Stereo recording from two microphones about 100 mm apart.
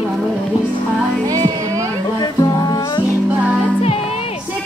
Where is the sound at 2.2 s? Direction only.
40° left (ahead or behind).